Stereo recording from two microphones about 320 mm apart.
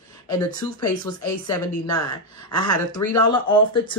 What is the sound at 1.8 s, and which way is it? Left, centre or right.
Speech, centre.